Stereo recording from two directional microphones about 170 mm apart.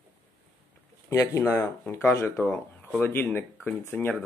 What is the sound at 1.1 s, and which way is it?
Speech, 15° left (ahead or behind).